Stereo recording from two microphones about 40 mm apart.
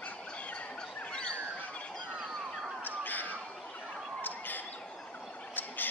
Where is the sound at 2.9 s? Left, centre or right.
Left.